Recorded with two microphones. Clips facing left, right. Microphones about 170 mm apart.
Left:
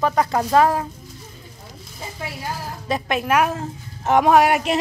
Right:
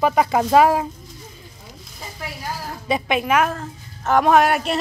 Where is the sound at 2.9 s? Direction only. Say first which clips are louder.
Right 1 dB; centre (ahead or behind).